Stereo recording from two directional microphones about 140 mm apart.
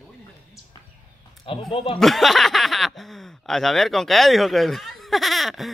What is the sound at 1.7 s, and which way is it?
Speech, 40° left (ahead or behind).